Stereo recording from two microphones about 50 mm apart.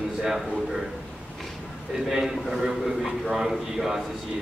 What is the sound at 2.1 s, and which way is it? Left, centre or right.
A man's voice, centre.